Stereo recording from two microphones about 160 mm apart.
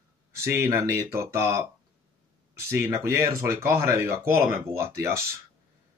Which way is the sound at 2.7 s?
15° right (ahead or behind).